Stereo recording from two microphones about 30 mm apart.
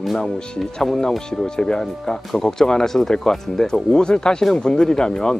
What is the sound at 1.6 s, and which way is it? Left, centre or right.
Speech, left.